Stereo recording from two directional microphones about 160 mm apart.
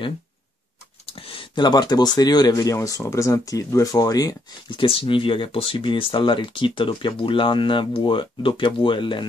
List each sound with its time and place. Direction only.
1.0 s speech: 35° left (ahead or behind)